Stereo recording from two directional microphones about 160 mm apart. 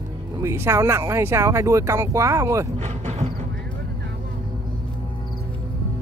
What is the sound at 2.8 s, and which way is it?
Vehicle, 45° right (ahead or behind).